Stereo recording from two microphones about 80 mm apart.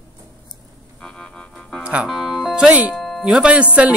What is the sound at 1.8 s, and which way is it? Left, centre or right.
Music, centre.